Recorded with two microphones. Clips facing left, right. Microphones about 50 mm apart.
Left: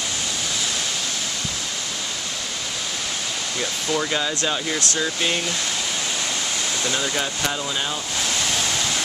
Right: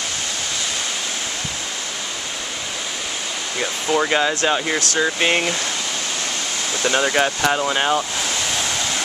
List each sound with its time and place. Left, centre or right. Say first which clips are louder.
3.5 s speech: right 5 dB; right
6.8 s speech: right 9 dB; right